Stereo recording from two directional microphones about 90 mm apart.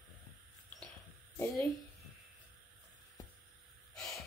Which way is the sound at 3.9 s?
5° left (ahead or behind).